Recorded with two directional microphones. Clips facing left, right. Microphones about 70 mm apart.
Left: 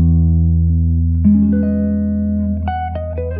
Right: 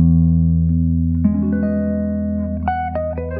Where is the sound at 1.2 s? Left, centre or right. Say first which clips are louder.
Left 7 dB; right.